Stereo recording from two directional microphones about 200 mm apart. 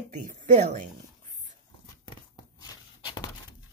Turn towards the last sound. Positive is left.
turn(degrees=20)  # may be behind; listen again after turning